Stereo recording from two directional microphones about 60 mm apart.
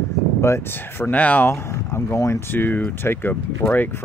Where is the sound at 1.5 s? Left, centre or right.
Left.